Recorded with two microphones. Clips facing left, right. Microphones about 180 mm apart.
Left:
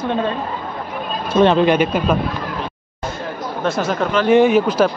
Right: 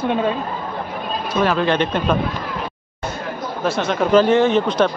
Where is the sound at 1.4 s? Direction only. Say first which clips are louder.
Left 6 dB; 25° left (ahead or behind).